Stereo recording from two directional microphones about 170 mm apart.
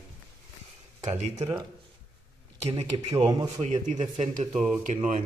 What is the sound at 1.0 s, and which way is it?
Speech, 40° right (ahead or behind).